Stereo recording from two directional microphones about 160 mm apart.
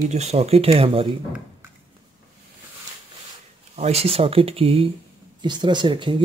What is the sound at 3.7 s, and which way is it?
Speech, 40° right (ahead or behind).